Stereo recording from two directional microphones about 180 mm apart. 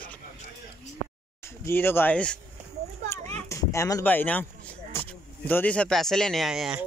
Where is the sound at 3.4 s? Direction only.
15° left (ahead or behind).